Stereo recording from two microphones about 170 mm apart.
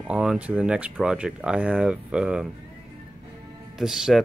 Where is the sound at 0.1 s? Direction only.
5° right (ahead or behind).